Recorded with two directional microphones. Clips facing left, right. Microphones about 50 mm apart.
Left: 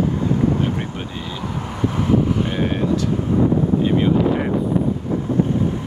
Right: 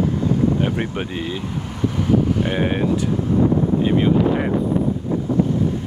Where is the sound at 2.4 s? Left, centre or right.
Right.